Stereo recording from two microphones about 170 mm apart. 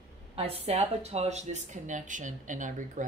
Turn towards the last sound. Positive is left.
turn(degrees=-50)  # may be behind; listen again after turning